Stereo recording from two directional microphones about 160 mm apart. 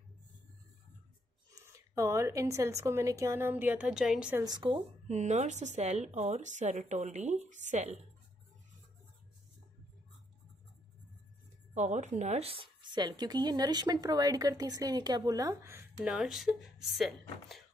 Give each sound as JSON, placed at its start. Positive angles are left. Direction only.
{"t": 1.5, "sound": "speech", "side_deg": -20}
{"t": 4.5, "sound": "speech", "side_deg": -30}
{"t": 5.0, "sound": "a woman's voice", "side_deg": -45}
{"t": 11.7, "sound": "speech", "side_deg": -50}